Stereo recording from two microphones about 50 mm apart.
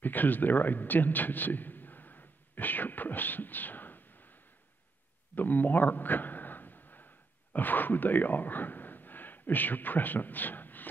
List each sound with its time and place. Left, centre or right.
0.0 s a man's voice: left
5.3 s a sound: left
7.5 s speech: left